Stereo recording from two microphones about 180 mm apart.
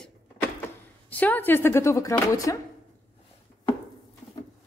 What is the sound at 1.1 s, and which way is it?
Speech, 10° left (ahead or behind).